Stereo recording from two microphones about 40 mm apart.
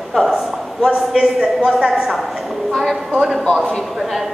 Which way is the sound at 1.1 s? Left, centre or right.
Centre.